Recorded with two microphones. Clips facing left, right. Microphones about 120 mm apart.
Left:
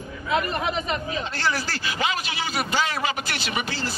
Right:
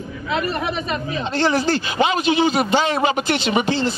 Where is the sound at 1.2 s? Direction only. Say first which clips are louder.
Right 8 dB; 20° right (ahead or behind).